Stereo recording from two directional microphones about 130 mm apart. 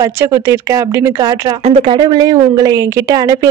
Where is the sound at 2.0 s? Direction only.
30° right (ahead or behind).